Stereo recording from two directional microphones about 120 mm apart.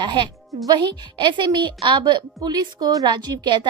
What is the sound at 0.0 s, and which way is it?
A woman's voice, 40° right (ahead or behind).